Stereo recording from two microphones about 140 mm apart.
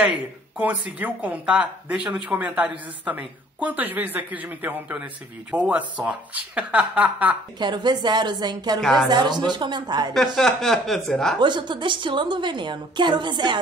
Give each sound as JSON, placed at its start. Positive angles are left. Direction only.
{"t": 0.6, "sound": "speech", "side_deg": -10}
{"t": 7.5, "sound": "a woman's voice", "side_deg": -30}
{"t": 10.1, "sound": "speech", "side_deg": 0}
{"t": 11.3, "sound": "a woman's voice", "side_deg": -30}